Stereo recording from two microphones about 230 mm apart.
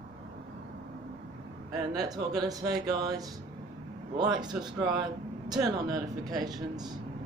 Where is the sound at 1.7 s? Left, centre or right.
Centre.